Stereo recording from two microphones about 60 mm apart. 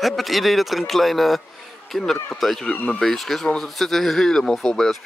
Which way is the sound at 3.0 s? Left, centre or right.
Centre.